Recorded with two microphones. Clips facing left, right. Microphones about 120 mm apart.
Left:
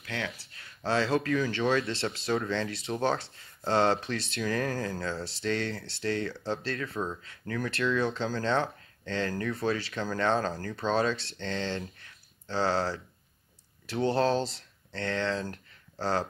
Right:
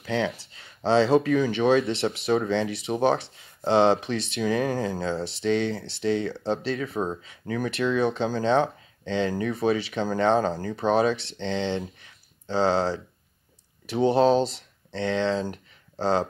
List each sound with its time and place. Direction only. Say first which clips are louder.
0.0 s speech: right 10 dB; 25° right (ahead or behind)